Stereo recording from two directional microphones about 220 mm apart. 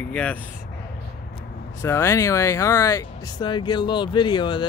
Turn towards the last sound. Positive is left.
turn(degrees=20)  # may be behind; listen again after turning